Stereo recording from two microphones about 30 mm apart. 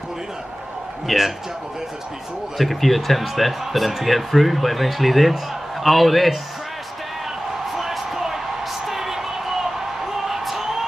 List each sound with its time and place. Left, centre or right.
1.0 s a man's voice: centre
2.5 s a man's voice: centre
7.7 s a sound: centre